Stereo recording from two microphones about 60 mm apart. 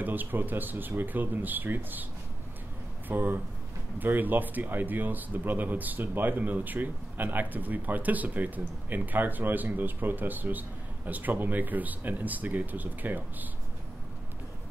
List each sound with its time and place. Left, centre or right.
0.0 s speech: right
3.1 s speech: right